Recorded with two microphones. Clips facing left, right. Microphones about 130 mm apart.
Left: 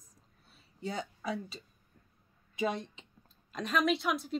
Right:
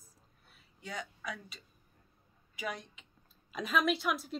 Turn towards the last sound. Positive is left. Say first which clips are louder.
# left 2 dB
turn(degrees=0)  # may be behind; listen again after turning